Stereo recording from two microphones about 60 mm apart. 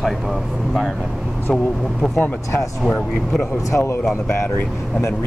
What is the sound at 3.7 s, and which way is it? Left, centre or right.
Speech, left.